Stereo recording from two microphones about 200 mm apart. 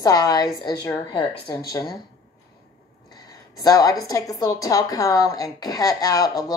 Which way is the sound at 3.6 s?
20° left (ahead or behind).